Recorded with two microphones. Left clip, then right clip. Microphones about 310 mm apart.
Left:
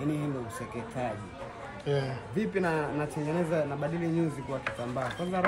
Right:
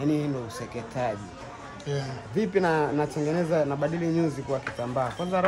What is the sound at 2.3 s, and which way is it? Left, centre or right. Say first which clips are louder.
A man's voice: right 6 dB; right.